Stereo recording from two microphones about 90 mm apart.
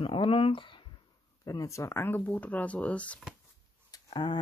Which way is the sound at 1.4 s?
40° left (ahead or behind).